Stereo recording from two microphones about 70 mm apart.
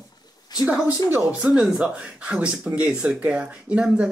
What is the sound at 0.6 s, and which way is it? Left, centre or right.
Speech, centre.